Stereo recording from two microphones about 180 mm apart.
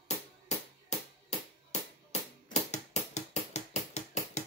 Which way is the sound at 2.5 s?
40° left (ahead or behind).